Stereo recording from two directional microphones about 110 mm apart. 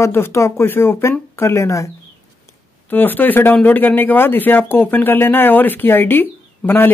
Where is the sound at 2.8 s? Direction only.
15° left (ahead or behind).